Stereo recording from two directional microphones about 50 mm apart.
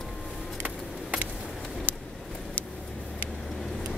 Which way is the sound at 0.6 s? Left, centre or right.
Right.